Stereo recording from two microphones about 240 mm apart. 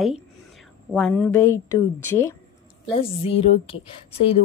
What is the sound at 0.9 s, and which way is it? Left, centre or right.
A woman's voice, centre.